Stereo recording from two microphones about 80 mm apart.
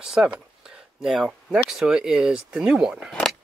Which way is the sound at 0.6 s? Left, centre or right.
Centre.